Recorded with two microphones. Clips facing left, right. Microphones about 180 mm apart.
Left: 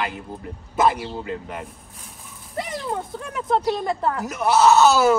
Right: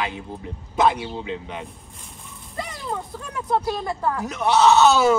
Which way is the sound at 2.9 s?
20° left (ahead or behind).